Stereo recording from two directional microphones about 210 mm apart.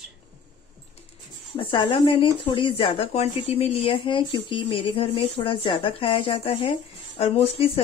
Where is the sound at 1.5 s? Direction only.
25° left (ahead or behind).